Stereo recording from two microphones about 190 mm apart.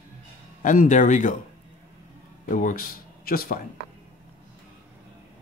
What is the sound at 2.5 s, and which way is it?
Speech, 45° left (ahead or behind).